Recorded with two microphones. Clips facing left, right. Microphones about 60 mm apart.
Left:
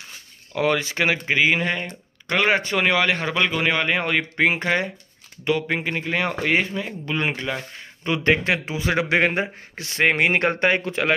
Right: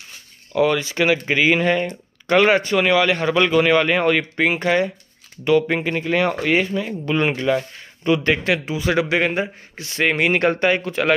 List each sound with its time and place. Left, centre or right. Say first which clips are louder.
0.6 s speech: right 3 dB; left
1.2 s speech: right 3 dB; centre
2.7 s speech: right 3 dB; left
3.3 s a man's voice: right 6 dB; centre
4.4 s speech: right 2 dB; left
5.6 s speech: right 4 dB; centre
5.9 s a man's voice: right 4 dB; centre
7.1 s speech: right 7 dB; centre
8.1 s speech: right 2 dB; left
9.1 s speech: even; left; by 11.1 s centre